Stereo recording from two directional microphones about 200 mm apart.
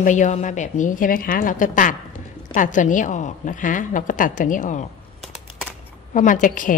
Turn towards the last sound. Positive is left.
turn(degrees=40)  # may be behind; listen again after turning